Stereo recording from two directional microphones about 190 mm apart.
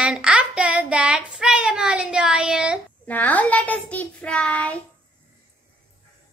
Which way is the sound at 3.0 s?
10° left (ahead or behind).